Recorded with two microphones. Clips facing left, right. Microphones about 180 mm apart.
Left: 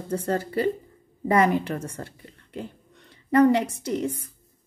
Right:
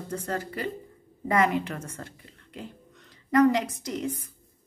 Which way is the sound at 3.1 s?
30° left (ahead or behind).